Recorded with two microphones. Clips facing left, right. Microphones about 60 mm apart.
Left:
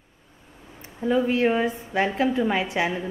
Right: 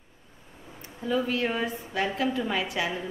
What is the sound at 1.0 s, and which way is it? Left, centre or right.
Speech, left.